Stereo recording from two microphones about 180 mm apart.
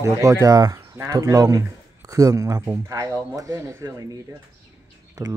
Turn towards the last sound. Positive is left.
turn(degrees=-20)  # may be behind; listen again after turning